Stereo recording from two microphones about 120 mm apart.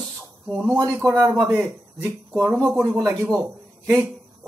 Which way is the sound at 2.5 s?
5° left (ahead or behind).